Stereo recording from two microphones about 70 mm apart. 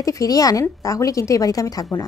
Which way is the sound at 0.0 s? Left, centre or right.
Left.